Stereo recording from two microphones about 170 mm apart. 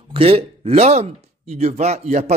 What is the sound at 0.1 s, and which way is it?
Speech, 35° right (ahead or behind).